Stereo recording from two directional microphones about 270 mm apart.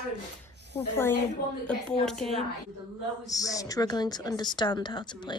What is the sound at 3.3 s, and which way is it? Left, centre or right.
A woman's voice, centre.